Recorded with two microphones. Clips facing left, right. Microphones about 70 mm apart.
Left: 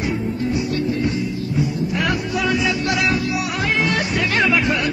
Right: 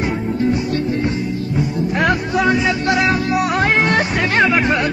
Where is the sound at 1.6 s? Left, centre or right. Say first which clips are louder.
Right 3 dB; right.